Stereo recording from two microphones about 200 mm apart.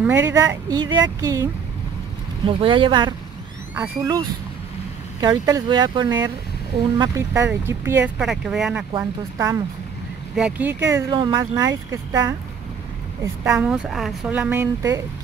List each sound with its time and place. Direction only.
0.0 s speech: 10° right (ahead or behind)
2.6 s speech: 25° right (ahead or behind)
3.7 s speech: 10° right (ahead or behind)
5.2 s speech: 15° right (ahead or behind)
8.2 s speech: centre (ahead or behind)
8.9 s speech: 15° right (ahead or behind)
13.4 s speech: 5° right (ahead or behind)